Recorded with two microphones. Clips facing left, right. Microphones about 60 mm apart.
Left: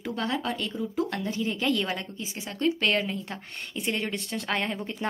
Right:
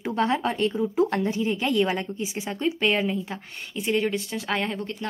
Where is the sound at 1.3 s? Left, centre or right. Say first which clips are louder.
Right 3 dB; centre.